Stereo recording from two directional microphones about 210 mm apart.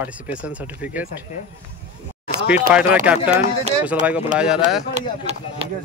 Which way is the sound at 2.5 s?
5° right (ahead or behind).